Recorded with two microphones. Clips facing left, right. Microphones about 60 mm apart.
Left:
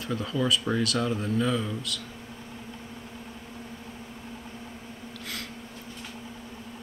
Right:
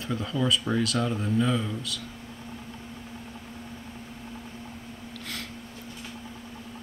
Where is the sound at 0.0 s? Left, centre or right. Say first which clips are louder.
Even; centre.